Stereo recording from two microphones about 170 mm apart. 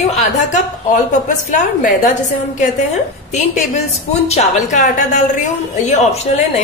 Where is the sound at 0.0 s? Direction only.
40° left (ahead or behind).